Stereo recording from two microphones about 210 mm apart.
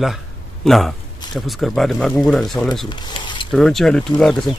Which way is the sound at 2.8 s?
20° left (ahead or behind).